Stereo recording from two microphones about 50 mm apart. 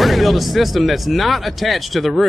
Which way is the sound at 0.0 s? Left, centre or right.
Centre.